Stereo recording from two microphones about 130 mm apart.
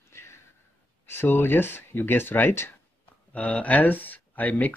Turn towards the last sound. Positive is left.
turn(degrees=10)  # may be behind; listen again after turning